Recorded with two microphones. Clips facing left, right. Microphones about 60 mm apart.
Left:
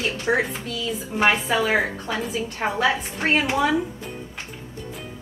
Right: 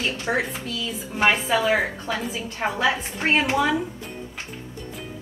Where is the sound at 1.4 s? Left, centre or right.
Centre.